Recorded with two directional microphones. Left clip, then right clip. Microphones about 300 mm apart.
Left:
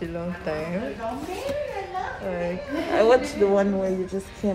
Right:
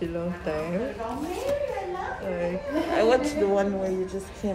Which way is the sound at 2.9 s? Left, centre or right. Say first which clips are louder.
Left 4 dB; centre.